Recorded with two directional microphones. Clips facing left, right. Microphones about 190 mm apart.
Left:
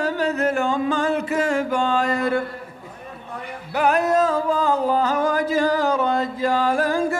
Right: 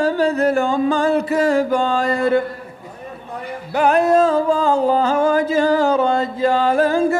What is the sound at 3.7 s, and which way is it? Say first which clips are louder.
Music: right 4 dB; 30° right (ahead or behind).